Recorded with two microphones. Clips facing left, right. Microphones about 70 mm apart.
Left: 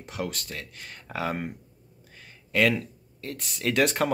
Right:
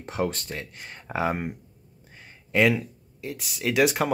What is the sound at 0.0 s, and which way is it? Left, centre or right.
Speech, right.